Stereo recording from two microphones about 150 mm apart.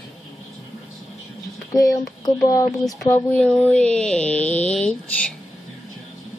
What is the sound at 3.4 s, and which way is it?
Speech, 5° left (ahead or behind).